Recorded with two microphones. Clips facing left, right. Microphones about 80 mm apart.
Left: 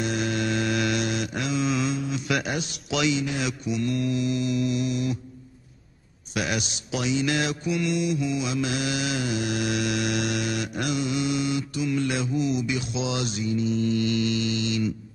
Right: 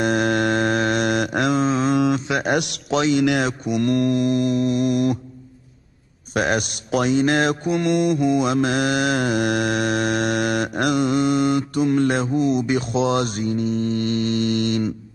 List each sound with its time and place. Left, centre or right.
0.0 s mantra: right
1.7 s mantra: right
2.5 s a man's voice: right
2.9 s a man's voice: right
3.2 s speech: right
6.3 s speech: right